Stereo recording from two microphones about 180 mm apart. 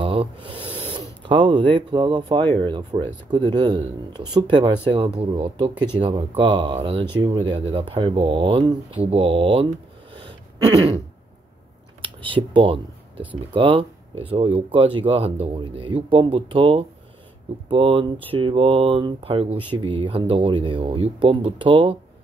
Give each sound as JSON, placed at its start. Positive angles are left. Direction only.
{"t": 0.0, "sound": "a sound", "side_deg": -30}
{"t": 0.6, "sound": "a sound", "side_deg": 10}
{"t": 0.9, "sound": "mechanisms", "side_deg": -25}
{"t": 1.8, "sound": "speech", "side_deg": -25}
{"t": 2.4, "sound": "speech", "side_deg": 10}
{"t": 2.7, "sound": "speech", "side_deg": -30}
{"t": 12.0, "sound": "speech", "side_deg": -30}